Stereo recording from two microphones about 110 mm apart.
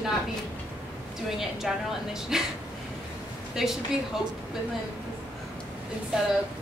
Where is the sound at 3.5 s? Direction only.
5° right (ahead or behind).